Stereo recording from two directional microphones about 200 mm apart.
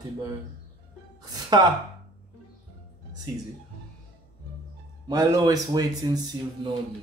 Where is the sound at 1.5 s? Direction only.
20° right (ahead or behind).